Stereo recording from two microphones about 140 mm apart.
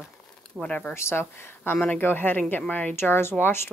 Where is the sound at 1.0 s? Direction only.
15° left (ahead or behind).